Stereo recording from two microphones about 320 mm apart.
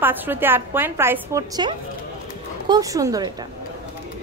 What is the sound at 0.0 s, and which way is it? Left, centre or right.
A woman's voice, centre.